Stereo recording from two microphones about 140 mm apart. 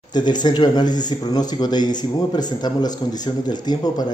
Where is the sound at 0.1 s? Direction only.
30° left (ahead or behind).